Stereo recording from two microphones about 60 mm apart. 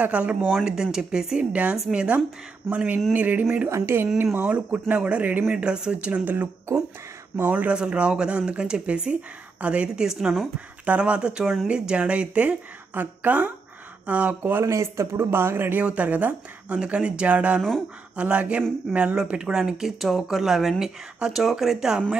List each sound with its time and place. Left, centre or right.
0.0 s speech: right
1.5 s speech: right
3.6 s a man's voice: right
4.5 s speech: right
10.0 s speech: centre
10.9 s speech: centre
14.6 s a man's voice: right
15.8 s speech: right
16.7 s speech: centre
17.6 s speech: centre
18.1 s speech: right